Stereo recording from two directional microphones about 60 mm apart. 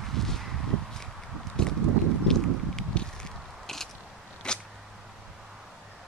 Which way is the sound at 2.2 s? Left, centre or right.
Centre.